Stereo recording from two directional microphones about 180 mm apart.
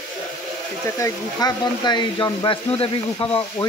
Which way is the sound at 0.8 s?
15° left (ahead or behind).